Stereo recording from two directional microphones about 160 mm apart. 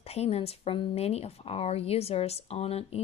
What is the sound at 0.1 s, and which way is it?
Speech, 40° left (ahead or behind).